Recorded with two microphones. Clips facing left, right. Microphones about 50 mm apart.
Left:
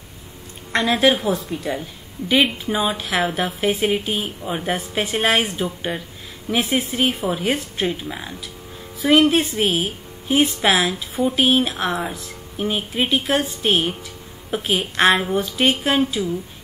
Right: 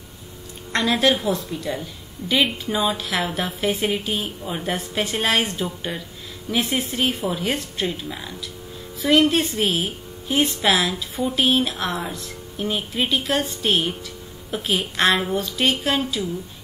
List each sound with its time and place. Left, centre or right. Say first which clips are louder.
0.7 s speech: left 2 dB; centre
3.9 s speech: left 2 dB; centre
6.5 s speech: left 2 dB; centre
9.0 s speech: left 2 dB; centre